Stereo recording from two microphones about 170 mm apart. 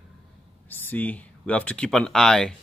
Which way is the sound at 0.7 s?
10° left (ahead or behind).